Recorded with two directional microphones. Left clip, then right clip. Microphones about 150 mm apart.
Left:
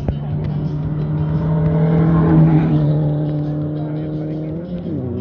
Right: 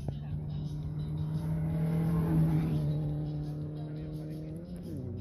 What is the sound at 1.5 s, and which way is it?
Vehicle, 20° right (ahead or behind).